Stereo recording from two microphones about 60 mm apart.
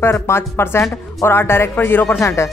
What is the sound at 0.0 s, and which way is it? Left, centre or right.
Speech, left.